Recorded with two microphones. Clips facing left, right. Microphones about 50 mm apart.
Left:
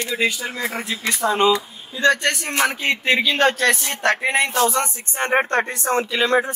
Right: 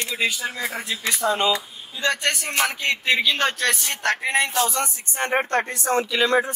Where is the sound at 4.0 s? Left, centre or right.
Left.